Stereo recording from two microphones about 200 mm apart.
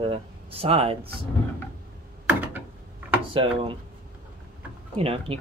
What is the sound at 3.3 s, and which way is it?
Speech, 25° right (ahead or behind).